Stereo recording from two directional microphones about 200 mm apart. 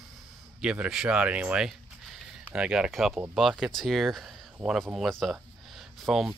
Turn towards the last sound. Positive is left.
turn(degrees=0)  # may be behind; listen again after turning